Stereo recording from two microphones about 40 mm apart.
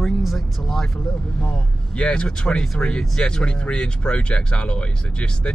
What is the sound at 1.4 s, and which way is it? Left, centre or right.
Speech, left.